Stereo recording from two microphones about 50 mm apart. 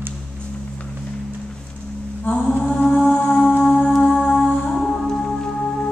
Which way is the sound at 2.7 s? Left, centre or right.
Centre.